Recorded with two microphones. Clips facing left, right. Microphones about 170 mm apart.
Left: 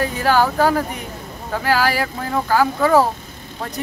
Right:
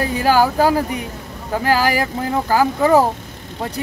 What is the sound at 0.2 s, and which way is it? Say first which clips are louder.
Speech: right 2 dB; 10° right (ahead or behind).